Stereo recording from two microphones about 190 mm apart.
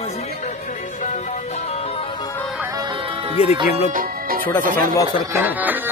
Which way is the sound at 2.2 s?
10° left (ahead or behind).